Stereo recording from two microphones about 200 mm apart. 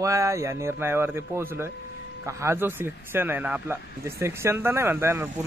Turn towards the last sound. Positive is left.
turn(degrees=-10)  # may be behind; listen again after turning